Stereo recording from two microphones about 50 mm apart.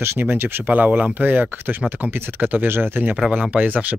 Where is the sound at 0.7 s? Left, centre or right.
Right.